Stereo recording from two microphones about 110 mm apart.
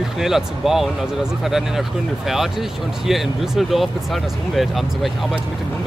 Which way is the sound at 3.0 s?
Centre (ahead or behind).